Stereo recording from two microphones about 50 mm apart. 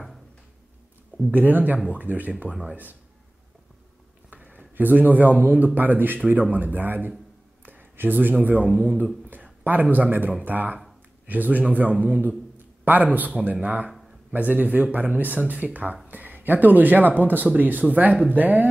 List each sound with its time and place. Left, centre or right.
1.3 s speech: right
4.3 s a man's voice: right
13.8 s a sound: centre
14.3 s speech: right